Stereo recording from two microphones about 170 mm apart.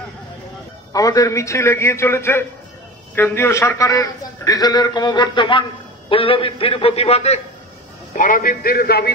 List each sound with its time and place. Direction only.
0.9 s a man's voice: 20° left (ahead or behind); by 7.3 s 35° left (ahead or behind)
8.2 s a man's voice: 55° left (ahead or behind)